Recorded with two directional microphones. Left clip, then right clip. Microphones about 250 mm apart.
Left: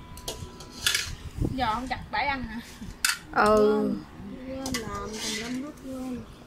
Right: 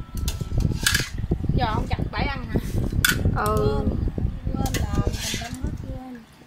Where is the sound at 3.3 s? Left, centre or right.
Centre.